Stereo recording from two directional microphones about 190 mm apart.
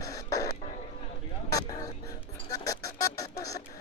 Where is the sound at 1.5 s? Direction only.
20° left (ahead or behind).